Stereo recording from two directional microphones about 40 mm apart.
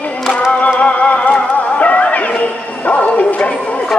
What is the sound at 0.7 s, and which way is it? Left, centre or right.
Music, left.